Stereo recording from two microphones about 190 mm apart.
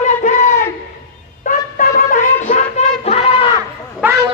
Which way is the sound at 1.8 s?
45° left (ahead or behind).